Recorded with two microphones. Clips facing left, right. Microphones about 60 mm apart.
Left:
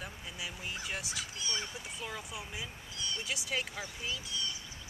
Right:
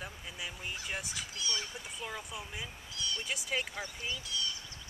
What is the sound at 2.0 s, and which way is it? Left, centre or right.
Speech, centre.